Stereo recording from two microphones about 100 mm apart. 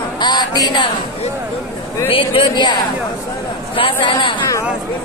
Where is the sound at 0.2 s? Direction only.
45° left (ahead or behind).